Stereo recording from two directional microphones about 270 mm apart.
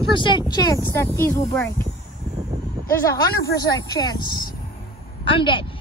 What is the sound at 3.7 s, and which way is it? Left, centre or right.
Speech, centre.